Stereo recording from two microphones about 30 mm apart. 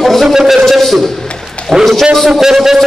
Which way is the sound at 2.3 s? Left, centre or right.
Centre.